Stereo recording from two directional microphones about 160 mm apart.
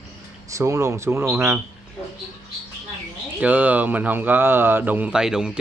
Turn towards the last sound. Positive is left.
turn(degrees=-5)  # may be behind; listen again after turning